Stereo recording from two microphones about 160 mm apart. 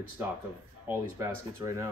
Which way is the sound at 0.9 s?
15° right (ahead or behind).